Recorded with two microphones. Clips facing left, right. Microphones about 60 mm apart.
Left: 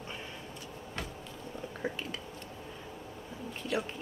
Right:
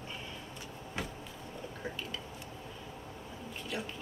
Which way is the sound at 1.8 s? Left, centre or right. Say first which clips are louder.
Left 6 dB; left.